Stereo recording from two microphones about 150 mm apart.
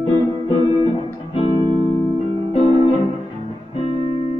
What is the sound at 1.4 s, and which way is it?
Music, 30° right (ahead or behind).